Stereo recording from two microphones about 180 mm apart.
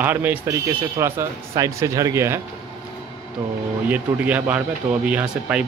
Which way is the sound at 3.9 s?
10° right (ahead or behind).